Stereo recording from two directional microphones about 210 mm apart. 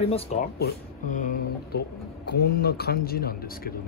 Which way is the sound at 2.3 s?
45° left (ahead or behind).